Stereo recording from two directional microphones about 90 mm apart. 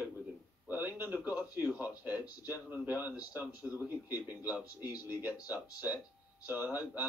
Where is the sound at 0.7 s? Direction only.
20° right (ahead or behind).